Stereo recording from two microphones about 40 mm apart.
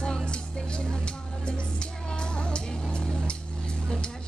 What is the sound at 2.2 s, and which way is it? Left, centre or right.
Music, left.